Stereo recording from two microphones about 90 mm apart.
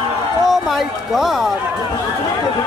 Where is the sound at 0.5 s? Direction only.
Centre (ahead or behind).